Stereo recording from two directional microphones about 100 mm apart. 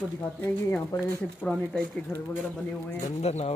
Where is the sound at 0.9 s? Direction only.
40° left (ahead or behind).